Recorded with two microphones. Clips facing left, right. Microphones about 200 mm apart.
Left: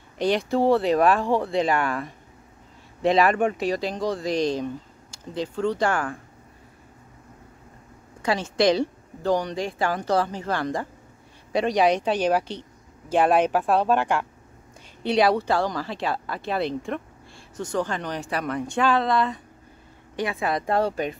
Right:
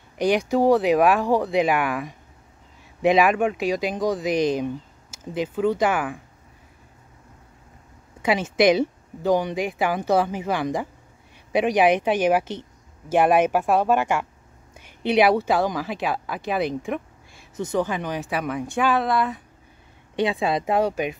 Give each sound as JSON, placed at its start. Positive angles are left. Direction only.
{"t": 0.2, "sound": "speech", "side_deg": -15}
{"t": 8.4, "sound": "speech", "side_deg": -20}
{"t": 17.8, "sound": "speech", "side_deg": -5}
{"t": 20.2, "sound": "speech", "side_deg": -20}